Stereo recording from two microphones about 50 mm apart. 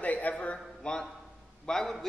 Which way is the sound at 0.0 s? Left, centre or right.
Left.